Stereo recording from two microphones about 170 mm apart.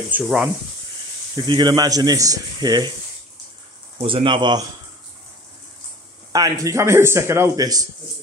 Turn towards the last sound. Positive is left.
turn(degrees=-20)  # may be behind; listen again after turning